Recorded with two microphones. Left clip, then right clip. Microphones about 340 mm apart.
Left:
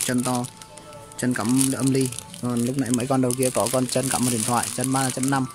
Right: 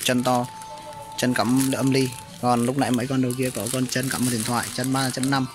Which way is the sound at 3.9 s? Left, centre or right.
Centre.